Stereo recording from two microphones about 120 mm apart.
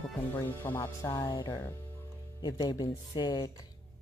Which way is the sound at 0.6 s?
20° left (ahead or behind).